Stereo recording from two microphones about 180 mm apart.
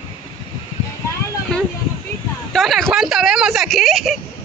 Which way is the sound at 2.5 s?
Centre (ahead or behind).